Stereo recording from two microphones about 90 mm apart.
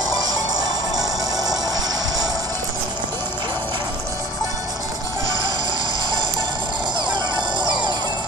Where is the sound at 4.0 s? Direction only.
35° right (ahead or behind).